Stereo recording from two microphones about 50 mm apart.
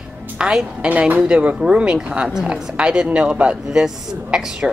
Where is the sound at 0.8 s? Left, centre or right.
Right.